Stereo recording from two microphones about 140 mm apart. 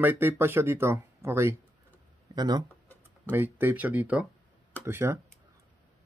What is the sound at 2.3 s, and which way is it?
Speech, 30° right (ahead or behind).